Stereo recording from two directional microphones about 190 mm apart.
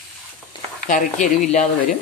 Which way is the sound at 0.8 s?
40° left (ahead or behind).